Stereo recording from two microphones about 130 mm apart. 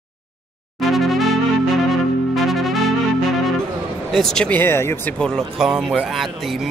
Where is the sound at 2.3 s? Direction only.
Centre (ahead or behind).